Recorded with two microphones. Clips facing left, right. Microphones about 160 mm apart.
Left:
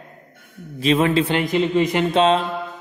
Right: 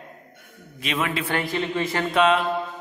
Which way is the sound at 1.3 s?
20° left (ahead or behind).